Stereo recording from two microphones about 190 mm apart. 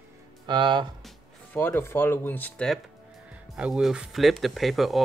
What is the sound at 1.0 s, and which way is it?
Speech, 10° left (ahead or behind).